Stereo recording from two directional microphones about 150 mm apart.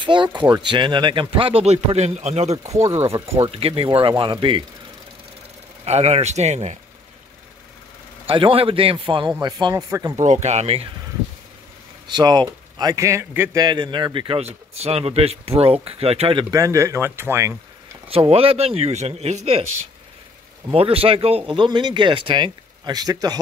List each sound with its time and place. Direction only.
0.0 s speech: 30° right (ahead or behind)
2.6 s a man's voice: 20° right (ahead or behind)
3.5 s speech: 40° right (ahead or behind)
5.9 s speech: 45° right (ahead or behind)
8.3 s speech: 35° right (ahead or behind)
10.1 s speech: 50° right (ahead or behind)
12.1 s a man's voice: 30° right (ahead or behind)
13.6 s speech: 30° right (ahead or behind)
16.4 s a man's voice: 20° right (ahead or behind)
18.0 s speech: 40° right (ahead or behind)
20.6 s speech: 40° right (ahead or behind)